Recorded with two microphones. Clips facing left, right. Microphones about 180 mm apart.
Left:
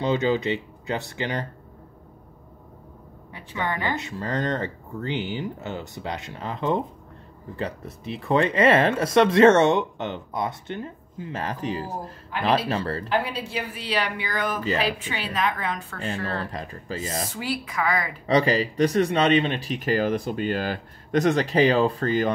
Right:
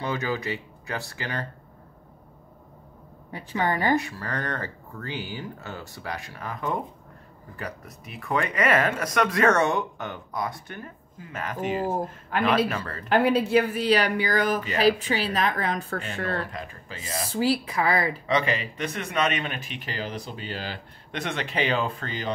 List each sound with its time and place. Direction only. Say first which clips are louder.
0.0 s speech: left 6 dB; 20° left (ahead or behind)
3.3 s a woman's voice: right 3 dB; 40° right (ahead or behind)
3.9 s speech: right 2 dB; 20° left (ahead or behind)
13.1 s a woman's voice: right 9 dB; 55° right (ahead or behind)
16.0 s speech: left 1 dB; 35° left (ahead or behind)
17.3 s a woman's voice: right 6 dB; 30° right (ahead or behind)
18.2 s speech: left 5 dB; 35° left (ahead or behind)